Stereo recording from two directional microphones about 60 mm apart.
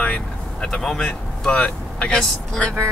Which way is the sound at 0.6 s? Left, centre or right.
Centre.